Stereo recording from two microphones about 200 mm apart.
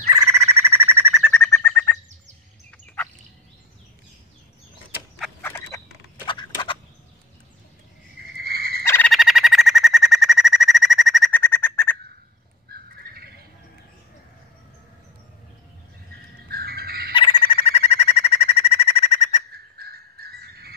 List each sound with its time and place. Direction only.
0.1 s frog: 15° right (ahead or behind)
1.1 s bird: 10° left (ahead or behind)
5.4 s frog: 15° left (ahead or behind)
6.2 s a sound: 25° left (ahead or behind)
8.4 s turkey: 50° right (ahead or behind)
8.8 s frog: 10° left (ahead or behind)
9.1 s bird: centre (ahead or behind)
11.4 s bird: 10° left (ahead or behind)
12.6 s squawk: 50° right (ahead or behind)
16.4 s squawk: 50° right (ahead or behind)
17.1 s a sound: 25° left (ahead or behind)
19.5 s bird: 50° right (ahead or behind)